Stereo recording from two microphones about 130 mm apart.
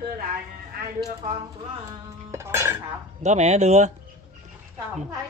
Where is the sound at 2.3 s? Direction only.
20° right (ahead or behind).